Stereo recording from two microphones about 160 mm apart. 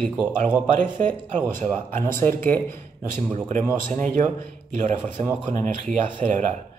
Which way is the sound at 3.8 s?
55° right (ahead or behind).